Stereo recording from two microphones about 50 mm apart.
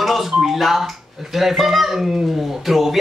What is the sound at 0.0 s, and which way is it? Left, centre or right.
Speech, centre.